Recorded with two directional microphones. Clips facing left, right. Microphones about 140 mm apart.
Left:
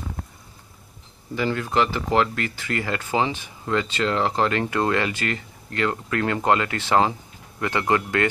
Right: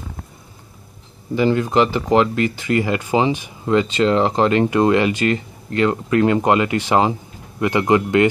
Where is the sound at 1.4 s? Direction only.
20° right (ahead or behind).